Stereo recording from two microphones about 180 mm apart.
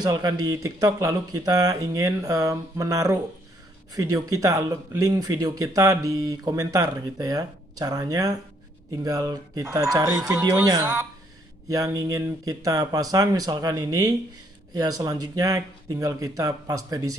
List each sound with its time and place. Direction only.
0.0 s speech: 20° right (ahead or behind)